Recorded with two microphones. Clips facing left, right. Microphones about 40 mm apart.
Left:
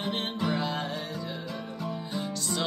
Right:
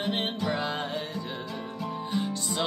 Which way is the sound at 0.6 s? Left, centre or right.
Right.